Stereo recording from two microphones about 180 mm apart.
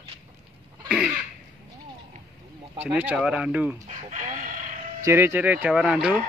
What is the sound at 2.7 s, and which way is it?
Speech, 10° right (ahead or behind).